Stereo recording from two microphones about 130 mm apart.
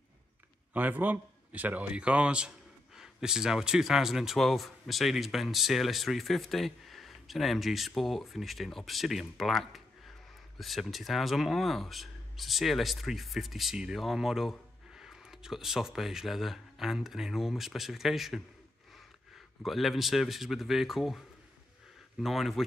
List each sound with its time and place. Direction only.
0.7 s a man's voice: 15° right (ahead or behind)
19.6 s speech: centre (ahead or behind)
22.2 s speech: centre (ahead or behind)